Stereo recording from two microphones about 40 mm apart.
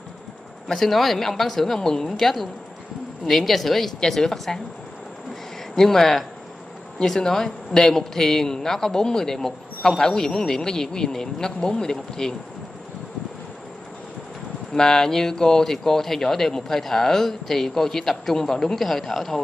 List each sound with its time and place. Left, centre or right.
0.7 s speech: centre
5.8 s speech: centre
14.7 s speech: centre